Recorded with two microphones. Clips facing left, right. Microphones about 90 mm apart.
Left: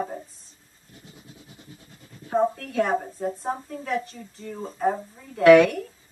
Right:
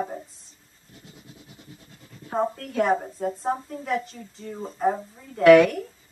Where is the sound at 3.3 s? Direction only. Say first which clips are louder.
Right 3 dB; centre (ahead or behind).